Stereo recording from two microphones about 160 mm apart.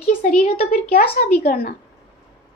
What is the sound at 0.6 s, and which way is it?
A woman's voice, 70° left (ahead or behind).